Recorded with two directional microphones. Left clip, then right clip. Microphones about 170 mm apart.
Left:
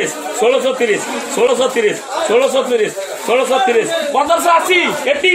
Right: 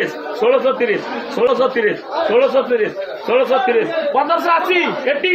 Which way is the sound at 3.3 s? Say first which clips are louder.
Left 2 dB; 30° left (ahead or behind).